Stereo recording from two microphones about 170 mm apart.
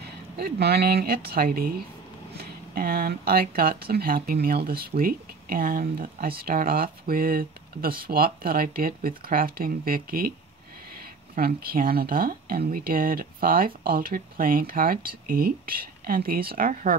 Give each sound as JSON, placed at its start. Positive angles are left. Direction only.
{"t": 0.0, "sound": "speech", "side_deg": -70}
{"t": 11.3, "sound": "speech", "side_deg": -60}